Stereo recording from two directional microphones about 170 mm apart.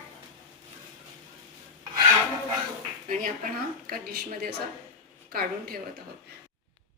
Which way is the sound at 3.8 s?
60° right (ahead or behind).